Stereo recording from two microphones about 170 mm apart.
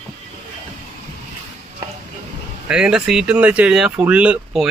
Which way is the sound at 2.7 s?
5° right (ahead or behind).